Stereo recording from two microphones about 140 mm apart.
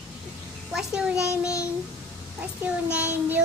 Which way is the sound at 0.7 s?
5° right (ahead or behind).